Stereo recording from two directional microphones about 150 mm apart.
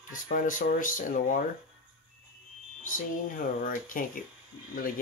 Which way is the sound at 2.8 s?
65° left (ahead or behind).